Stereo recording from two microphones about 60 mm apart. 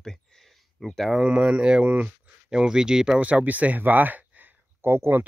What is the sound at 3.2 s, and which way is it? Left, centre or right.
Speech, right.